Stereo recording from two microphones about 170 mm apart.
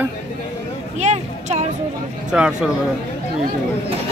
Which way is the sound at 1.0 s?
40° right (ahead or behind).